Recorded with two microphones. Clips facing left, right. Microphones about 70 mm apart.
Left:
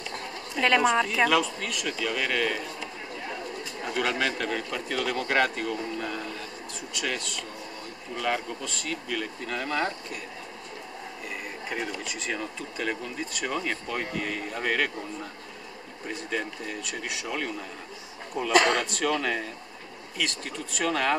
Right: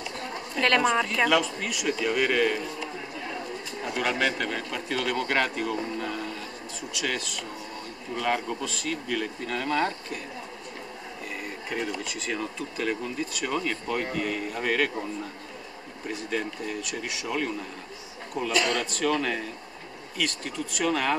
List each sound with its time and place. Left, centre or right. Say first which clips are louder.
0.6 s speech: left 1 dB; centre
3.9 s speech: right 1 dB; centre
11.7 s speech: right 2 dB; centre
16.1 s speech: right 1 dB; centre
18.5 s a man's voice: left 5 dB; left
18.8 s speech: right 1 dB; centre